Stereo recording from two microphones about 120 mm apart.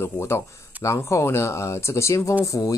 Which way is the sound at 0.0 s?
25° left (ahead or behind).